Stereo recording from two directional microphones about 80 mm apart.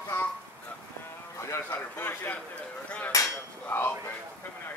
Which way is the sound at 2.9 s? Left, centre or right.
Centre.